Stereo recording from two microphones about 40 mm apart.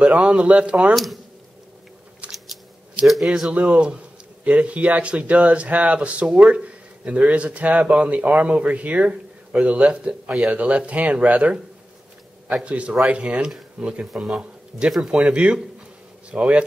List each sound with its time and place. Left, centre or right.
0.0 s speech: right
0.9 s speech: centre
2.2 s a sound: right
3.1 s speech: centre
3.5 s speech: right
12.6 s speech: right
14.1 s speech: centre
15.2 s speech: right